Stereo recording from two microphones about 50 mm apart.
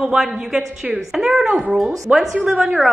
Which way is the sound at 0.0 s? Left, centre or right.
Centre.